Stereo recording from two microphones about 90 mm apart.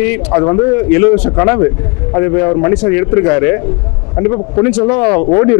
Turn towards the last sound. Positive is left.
turn(degrees=25)  # may be behind; listen again after turning